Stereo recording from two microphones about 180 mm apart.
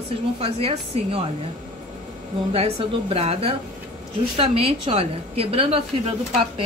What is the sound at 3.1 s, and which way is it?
A woman's voice, 35° right (ahead or behind).